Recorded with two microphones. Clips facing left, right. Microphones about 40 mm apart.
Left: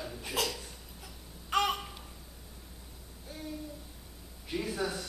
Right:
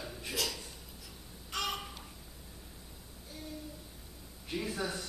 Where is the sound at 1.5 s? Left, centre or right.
Left.